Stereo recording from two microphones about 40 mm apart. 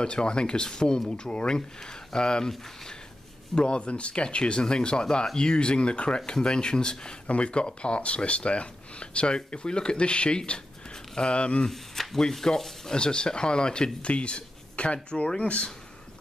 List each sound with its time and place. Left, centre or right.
0.0 s speech: left
3.5 s speech: left
11.6 s speech: centre
12.9 s speech: left